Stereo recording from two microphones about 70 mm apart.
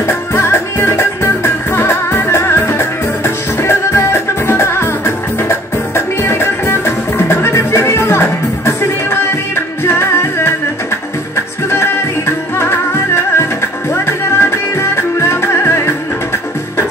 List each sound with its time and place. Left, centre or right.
0.0 s music: left
12.5 s music: left